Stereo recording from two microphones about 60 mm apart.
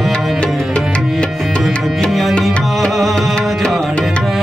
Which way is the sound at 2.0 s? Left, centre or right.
Centre.